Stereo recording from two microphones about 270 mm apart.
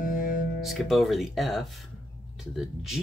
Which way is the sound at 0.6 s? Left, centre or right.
Centre.